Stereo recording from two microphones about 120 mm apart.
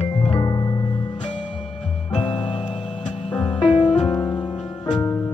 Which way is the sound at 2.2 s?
45° left (ahead or behind).